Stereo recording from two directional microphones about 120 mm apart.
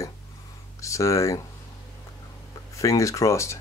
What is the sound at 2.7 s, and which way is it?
Speech, 25° left (ahead or behind).